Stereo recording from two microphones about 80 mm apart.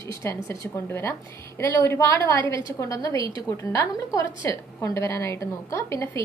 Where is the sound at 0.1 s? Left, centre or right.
Left.